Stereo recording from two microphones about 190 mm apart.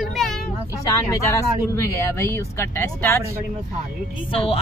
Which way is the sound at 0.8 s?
15° left (ahead or behind).